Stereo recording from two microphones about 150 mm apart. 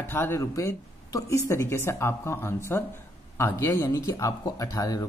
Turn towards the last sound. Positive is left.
turn(degrees=25)  # may be behind; listen again after turning